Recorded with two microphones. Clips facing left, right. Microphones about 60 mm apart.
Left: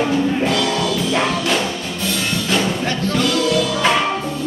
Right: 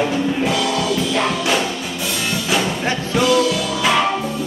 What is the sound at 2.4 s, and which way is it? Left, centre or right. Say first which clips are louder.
Music: even; centre.